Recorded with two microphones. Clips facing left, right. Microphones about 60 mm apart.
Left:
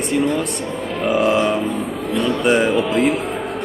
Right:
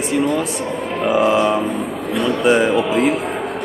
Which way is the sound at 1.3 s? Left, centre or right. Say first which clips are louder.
Right 1 dB; centre.